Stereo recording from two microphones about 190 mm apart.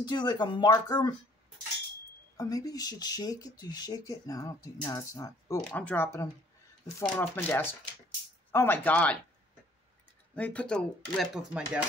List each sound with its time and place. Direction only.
0.0 s speech: 25° left (ahead or behind)
2.3 s speech: 20° left (ahead or behind)
5.6 s speech: 5° left (ahead or behind)
10.3 s speech: 5° left (ahead or behind)